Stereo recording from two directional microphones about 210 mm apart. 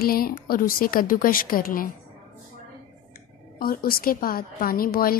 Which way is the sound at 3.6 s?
45° left (ahead or behind).